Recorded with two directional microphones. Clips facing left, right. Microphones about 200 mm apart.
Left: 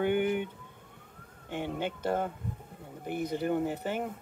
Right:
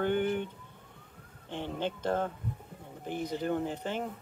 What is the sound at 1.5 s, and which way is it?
Speech, 10° left (ahead or behind).